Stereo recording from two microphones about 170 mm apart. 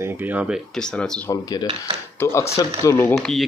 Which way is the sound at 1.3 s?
20° left (ahead or behind).